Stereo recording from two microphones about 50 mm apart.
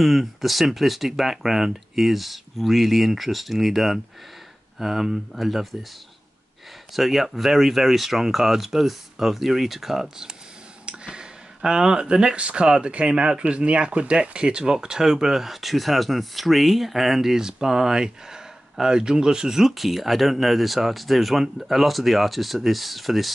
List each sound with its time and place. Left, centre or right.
0.0 s speech: centre
6.9 s speech: centre